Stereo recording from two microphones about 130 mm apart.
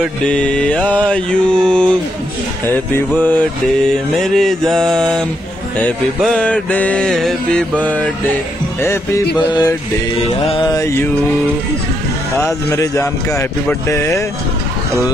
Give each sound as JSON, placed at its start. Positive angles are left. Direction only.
{"t": 0.3, "sound": "music", "side_deg": 5}
{"t": 3.2, "sound": "music", "side_deg": 10}
{"t": 3.9, "sound": "mantra", "side_deg": 0}
{"t": 5.8, "sound": "music", "side_deg": 10}
{"t": 9.5, "sound": "mantra", "side_deg": 30}
{"t": 10.6, "sound": "speech", "side_deg": 25}
{"t": 12.4, "sound": "speech", "side_deg": 20}